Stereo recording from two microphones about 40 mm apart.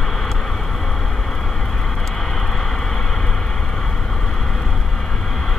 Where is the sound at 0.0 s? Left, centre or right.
Centre.